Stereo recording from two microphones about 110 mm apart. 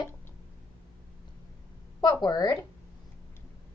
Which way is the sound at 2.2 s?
35° left (ahead or behind).